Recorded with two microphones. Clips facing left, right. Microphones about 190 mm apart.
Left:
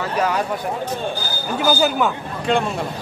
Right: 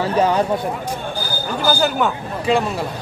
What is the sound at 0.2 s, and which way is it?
Speech, 30° right (ahead or behind).